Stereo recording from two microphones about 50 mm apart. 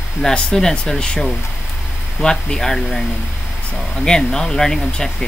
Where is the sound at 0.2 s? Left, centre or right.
Centre.